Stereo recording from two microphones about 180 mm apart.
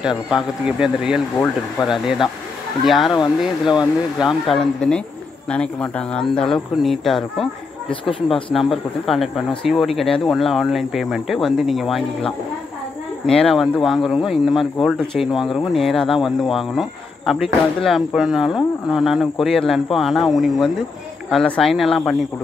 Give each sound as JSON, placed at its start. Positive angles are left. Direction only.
{"t": 0.0, "sound": "speech", "side_deg": -5}
{"t": 7.9, "sound": "speech", "side_deg": 30}
{"t": 8.5, "sound": "speech", "side_deg": 0}